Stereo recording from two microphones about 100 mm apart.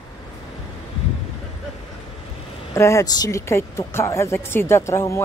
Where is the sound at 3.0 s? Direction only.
40° left (ahead or behind).